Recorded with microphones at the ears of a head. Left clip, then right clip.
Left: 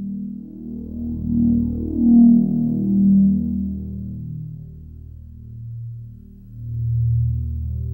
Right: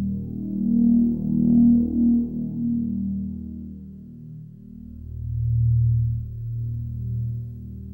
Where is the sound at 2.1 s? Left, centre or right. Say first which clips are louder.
Left 12 dB; left.